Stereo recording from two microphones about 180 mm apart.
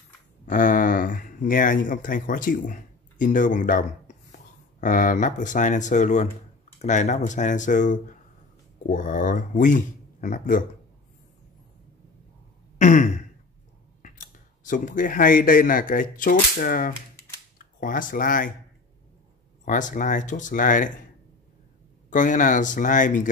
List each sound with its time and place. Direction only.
0.5 s speech: 45° left (ahead or behind)
12.7 s throat clearing: 45° left (ahead or behind)
14.0 s speech: 45° left (ahead or behind)
19.6 s speech: 45° left (ahead or behind)
22.1 s speech: 45° left (ahead or behind)